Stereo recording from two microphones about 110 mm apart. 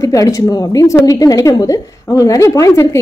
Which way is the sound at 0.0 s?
30° left (ahead or behind).